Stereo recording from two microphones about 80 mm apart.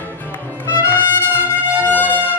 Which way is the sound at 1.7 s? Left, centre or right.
Left.